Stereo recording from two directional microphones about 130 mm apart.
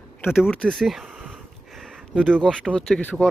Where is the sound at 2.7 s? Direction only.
5° left (ahead or behind).